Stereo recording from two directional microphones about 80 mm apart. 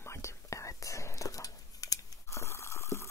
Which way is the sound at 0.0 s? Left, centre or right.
Left.